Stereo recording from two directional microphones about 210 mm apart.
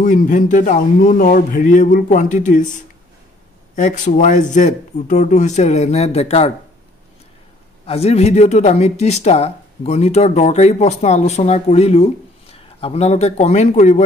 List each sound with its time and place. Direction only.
0.0 s speech: 40° left (ahead or behind)
7.8 s speech: 30° left (ahead or behind)